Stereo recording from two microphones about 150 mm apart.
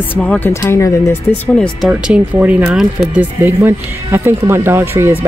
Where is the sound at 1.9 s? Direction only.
10° right (ahead or behind).